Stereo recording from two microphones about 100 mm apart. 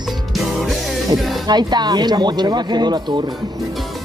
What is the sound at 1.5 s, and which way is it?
Speech, 45° right (ahead or behind).